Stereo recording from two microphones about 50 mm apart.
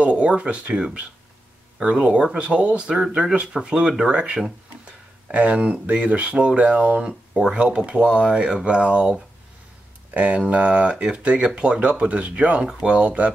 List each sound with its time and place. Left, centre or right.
0.0 s speech: right
10.1 s speech: right